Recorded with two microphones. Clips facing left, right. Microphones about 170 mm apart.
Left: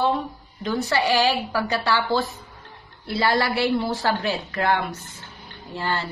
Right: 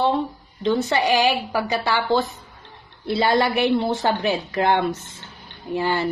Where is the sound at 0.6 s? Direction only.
25° right (ahead or behind).